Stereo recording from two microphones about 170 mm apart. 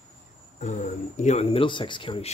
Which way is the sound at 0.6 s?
50° left (ahead or behind).